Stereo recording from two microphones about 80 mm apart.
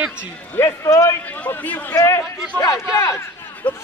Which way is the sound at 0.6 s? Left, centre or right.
Left.